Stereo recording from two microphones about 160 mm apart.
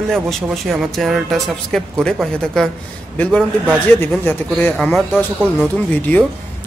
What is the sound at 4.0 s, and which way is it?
Speech, 10° left (ahead or behind).